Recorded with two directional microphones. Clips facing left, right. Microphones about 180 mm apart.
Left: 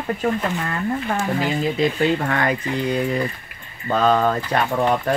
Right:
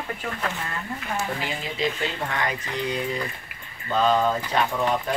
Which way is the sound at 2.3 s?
55° left (ahead or behind).